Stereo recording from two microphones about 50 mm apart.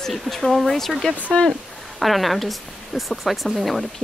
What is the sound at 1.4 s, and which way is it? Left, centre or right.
Speech, left.